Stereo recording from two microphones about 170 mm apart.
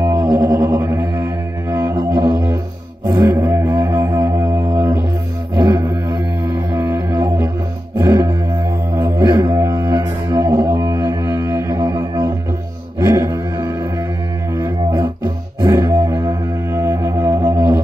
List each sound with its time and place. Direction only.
0.0 s music: 15° right (ahead or behind)
13.0 s a sound: 20° right (ahead or behind)
14.6 s music: 25° right (ahead or behind)